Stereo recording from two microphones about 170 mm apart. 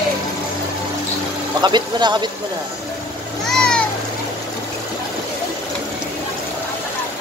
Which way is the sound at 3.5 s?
5° left (ahead or behind).